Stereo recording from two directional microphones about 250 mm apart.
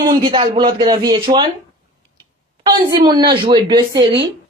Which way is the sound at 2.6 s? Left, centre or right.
Centre.